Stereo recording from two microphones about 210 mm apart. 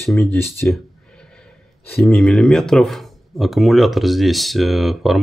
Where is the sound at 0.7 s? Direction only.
5° left (ahead or behind).